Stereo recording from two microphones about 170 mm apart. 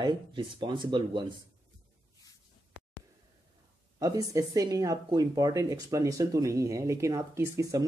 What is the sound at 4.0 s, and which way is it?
Speech, 20° right (ahead or behind).